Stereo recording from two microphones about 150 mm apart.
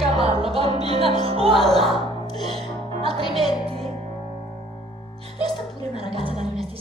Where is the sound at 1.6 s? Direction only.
Centre (ahead or behind).